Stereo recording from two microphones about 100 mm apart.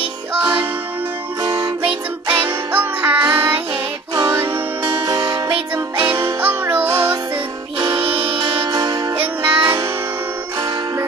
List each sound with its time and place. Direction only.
1.4 s music: 40° right (ahead or behind)
1.8 s music: 15° right (ahead or behind)
4.1 s music: 40° right (ahead or behind)
4.4 s music: 25° right (ahead or behind)
5.0 s music: 40° right (ahead or behind)
5.5 s music: 20° right (ahead or behind)
7.8 s music: 60° right (ahead or behind)
8.6 s music: 45° right (ahead or behind)
9.1 s music: 20° right (ahead or behind)